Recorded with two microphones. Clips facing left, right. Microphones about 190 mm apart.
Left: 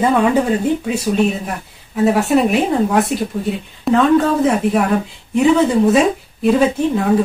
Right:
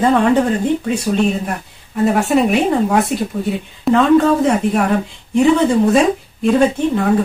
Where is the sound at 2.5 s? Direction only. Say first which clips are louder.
Right 1 dB; centre (ahead or behind).